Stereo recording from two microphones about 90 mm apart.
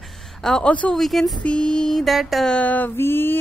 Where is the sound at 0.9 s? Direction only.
Centre (ahead or behind).